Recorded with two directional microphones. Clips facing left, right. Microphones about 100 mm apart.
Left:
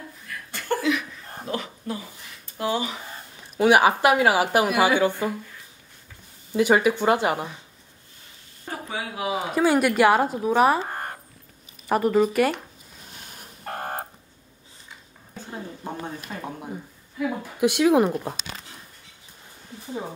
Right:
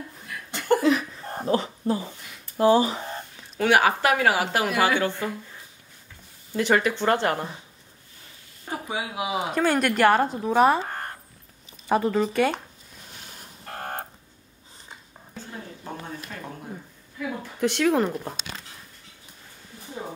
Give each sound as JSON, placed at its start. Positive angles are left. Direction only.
{"t": 0.3, "sound": "chuckle", "side_deg": -20}
{"t": 0.8, "sound": "a sound", "side_deg": -35}
{"t": 2.5, "sound": "speech", "side_deg": -35}
{"t": 3.5, "sound": "speech", "side_deg": 15}
{"t": 6.5, "sound": "speech", "side_deg": 10}
{"t": 8.6, "sound": "speech", "side_deg": -15}
{"t": 9.5, "sound": "speech", "side_deg": 5}
{"t": 10.9, "sound": "a sound", "side_deg": 15}
{"t": 11.9, "sound": "speech", "side_deg": 5}
{"t": 13.7, "sound": "a sound", "side_deg": 10}
{"t": 15.5, "sound": "a sound", "side_deg": 25}
{"t": 17.2, "sound": "speech", "side_deg": 10}